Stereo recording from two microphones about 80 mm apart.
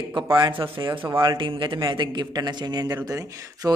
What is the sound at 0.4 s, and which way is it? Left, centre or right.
Speech, right.